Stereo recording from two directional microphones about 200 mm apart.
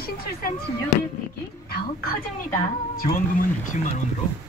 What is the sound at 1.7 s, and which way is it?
A woman's voice, 50° left (ahead or behind).